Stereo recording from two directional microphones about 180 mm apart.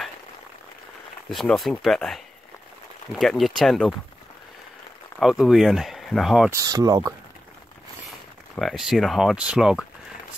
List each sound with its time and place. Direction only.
1.3 s speech: centre (ahead or behind)
5.2 s speech: centre (ahead or behind)
6.5 s speech: 20° right (ahead or behind)
8.5 s speech: centre (ahead or behind)